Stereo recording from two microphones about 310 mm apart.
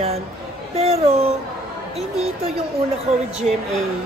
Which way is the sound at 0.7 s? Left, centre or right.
Centre.